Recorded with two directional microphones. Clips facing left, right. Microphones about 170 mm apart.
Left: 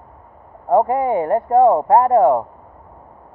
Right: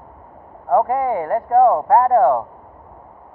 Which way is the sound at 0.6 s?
20° left (ahead or behind).